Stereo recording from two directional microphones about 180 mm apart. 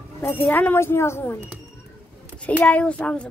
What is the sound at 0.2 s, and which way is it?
Speech, 10° left (ahead or behind).